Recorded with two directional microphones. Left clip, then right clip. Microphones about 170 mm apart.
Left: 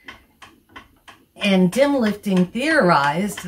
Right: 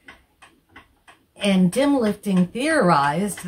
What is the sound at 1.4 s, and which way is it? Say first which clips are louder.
Speech: left 3 dB; 45° right (ahead or behind).